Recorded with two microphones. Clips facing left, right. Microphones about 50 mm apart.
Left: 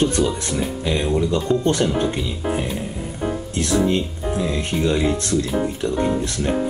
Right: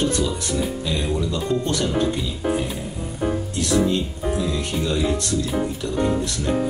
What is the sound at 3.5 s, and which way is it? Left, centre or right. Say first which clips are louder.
Speech: left 2 dB; left.